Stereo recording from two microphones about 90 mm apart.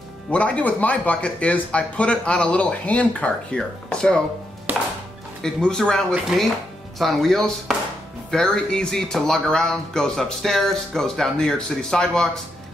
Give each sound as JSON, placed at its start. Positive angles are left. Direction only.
{"t": 0.3, "sound": "speech", "side_deg": 15}
{"t": 4.7, "sound": "music", "side_deg": -20}
{"t": 5.4, "sound": "speech", "side_deg": 5}